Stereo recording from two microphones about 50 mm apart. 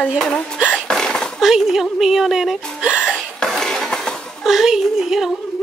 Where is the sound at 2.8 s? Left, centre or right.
Right.